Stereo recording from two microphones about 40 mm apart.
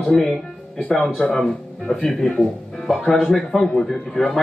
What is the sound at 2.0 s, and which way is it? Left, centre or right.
Speech, centre.